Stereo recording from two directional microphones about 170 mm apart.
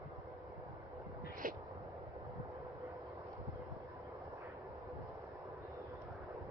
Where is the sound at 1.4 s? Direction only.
55° right (ahead or behind).